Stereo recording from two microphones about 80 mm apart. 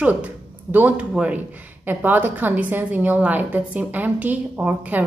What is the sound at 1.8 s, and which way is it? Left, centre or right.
A woman's voice, right.